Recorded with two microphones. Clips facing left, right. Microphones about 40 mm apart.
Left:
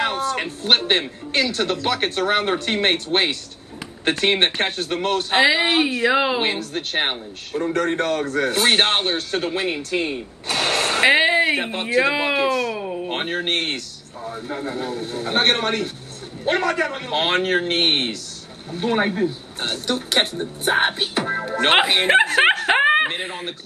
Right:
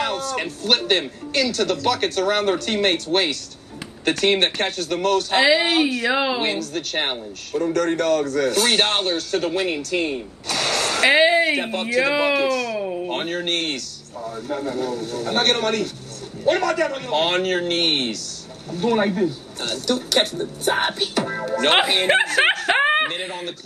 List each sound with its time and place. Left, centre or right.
0.0 s a sound: left
1.3 s a man's voice: left
5.4 s a man's voice: centre
5.7 s speech: left
6.0 s a man's voice: centre
6.4 s speech: left
10.5 s a sound: left
11.1 s a man's voice: centre
12.7 s a sound: centre
13.1 s a man's voice: left
21.7 s speech: centre
22.8 s snicker: centre
23.0 s a sound: centre